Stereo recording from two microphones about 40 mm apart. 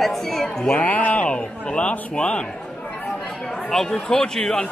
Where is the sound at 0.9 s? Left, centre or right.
Left.